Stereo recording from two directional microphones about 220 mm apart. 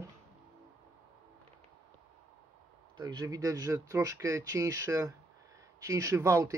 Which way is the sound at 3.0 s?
15° right (ahead or behind).